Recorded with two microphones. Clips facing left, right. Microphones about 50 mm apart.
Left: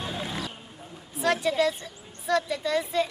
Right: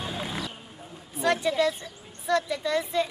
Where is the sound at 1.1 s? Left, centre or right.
Centre.